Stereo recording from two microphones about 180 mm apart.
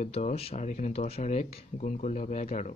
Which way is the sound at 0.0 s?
40° left (ahead or behind).